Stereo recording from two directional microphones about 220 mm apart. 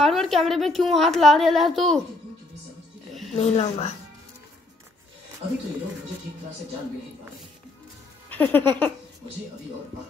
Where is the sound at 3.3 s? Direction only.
30° left (ahead or behind).